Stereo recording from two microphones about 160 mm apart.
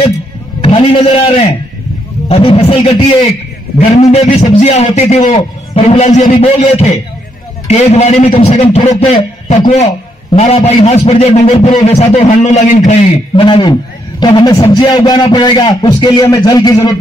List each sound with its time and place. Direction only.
0.6 s a man's voice: 35° left (ahead or behind)
13.4 s a man's voice: 30° left (ahead or behind)